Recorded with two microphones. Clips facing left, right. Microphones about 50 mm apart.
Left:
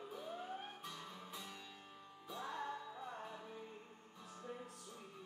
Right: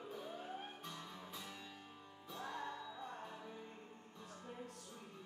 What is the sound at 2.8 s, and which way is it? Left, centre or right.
Music, left.